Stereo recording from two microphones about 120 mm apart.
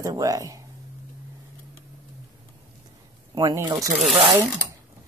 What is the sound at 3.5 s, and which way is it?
Speech, 30° right (ahead or behind).